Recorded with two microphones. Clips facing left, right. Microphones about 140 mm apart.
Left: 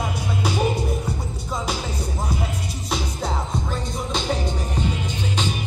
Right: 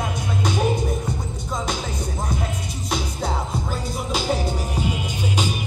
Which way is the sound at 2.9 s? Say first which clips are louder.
Right 1 dB; centre (ahead or behind).